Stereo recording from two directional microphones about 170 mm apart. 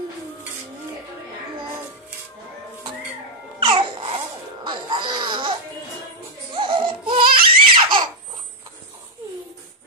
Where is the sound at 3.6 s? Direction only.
30° right (ahead or behind).